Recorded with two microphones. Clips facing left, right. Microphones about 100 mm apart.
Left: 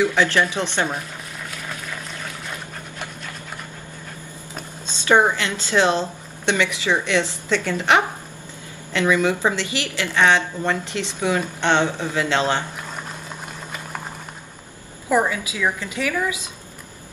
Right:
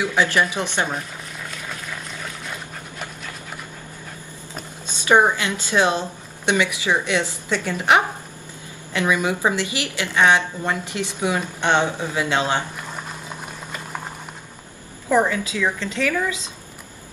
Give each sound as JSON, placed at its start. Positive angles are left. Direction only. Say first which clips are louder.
{"t": 0.1, "sound": "a woman's voice", "louder": "even", "side_deg": -15}
{"t": 4.8, "sound": "a woman's voice", "louder": "even", "side_deg": -15}
{"t": 15.0, "sound": "a woman's voice", "louder": "right 1 dB", "side_deg": 10}